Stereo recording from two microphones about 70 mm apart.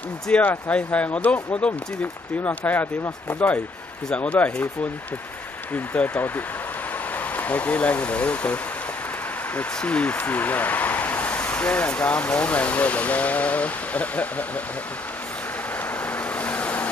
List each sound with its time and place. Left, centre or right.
0.3 s speech: left
5.9 s speech: left
9.6 s speech: centre
16.3 s vehicle: centre